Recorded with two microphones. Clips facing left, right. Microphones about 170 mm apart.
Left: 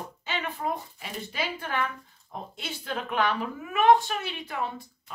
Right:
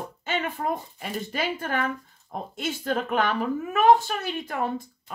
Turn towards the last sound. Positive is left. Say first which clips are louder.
# right 4 dB
turn(degrees=-45)  # may be behind; listen again after turning